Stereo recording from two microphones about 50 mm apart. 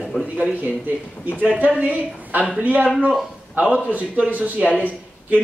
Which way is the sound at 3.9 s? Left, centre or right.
Right.